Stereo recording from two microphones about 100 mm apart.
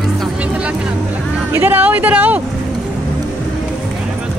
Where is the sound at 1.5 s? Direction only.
20° right (ahead or behind).